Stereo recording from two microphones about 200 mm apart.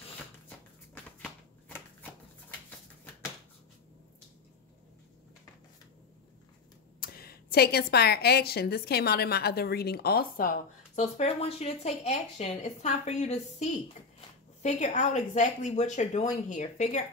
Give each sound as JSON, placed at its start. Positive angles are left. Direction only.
{"t": 7.0, "sound": "a woman's voice", "side_deg": 50}